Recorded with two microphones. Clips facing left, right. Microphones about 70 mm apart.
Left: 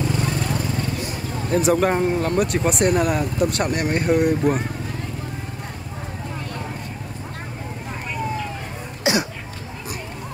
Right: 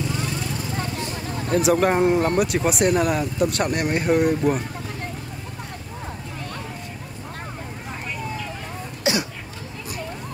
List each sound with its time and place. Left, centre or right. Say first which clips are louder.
0.2 s vehicle: left 4 dB; left
1.5 s speech: even; centre
2.0 s speech: right 2 dB; right
2.3 s speech: even; centre
9.1 s throat clearing: left 2 dB; left